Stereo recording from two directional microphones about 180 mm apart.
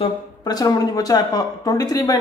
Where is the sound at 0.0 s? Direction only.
20° left (ahead or behind).